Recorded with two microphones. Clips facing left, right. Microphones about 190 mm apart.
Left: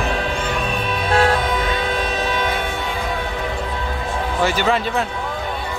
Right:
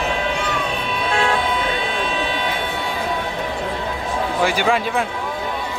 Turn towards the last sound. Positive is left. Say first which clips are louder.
# even
turn(degrees=-10)  # may be behind; listen again after turning